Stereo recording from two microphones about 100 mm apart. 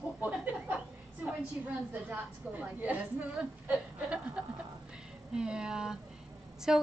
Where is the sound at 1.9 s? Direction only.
15° right (ahead or behind).